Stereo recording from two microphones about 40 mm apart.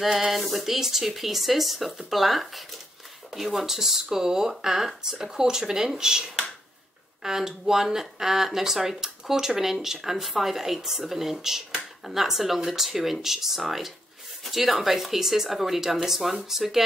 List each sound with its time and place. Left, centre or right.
0.0 s speech: centre
7.2 s speech: centre